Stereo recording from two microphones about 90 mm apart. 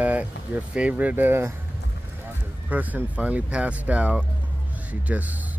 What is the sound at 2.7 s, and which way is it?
Speech, 20° right (ahead or behind).